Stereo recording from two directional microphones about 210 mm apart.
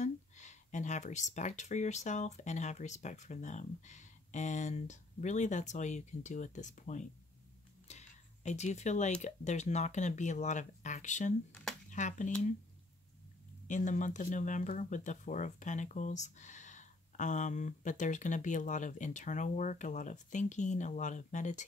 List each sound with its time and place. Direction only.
0.0 s speech: 35° left (ahead or behind)
7.9 s a sound: 35° left (ahead or behind)
8.5 s speech: 35° left (ahead or behind)
13.7 s speech: 35° left (ahead or behind)